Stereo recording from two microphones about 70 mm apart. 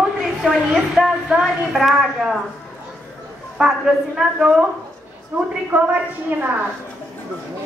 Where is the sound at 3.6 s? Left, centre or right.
Centre.